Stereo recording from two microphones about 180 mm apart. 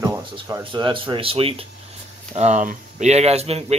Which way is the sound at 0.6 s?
25° right (ahead or behind).